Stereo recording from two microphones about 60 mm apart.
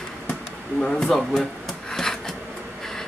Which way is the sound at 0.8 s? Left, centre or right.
Centre.